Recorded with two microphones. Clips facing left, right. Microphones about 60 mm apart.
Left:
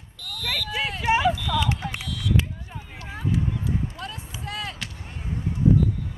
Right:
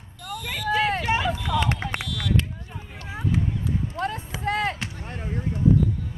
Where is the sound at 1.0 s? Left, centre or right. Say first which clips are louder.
Left 3 dB; centre.